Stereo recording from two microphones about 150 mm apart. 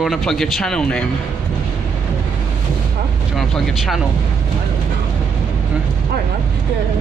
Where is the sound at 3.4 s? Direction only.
Centre (ahead or behind).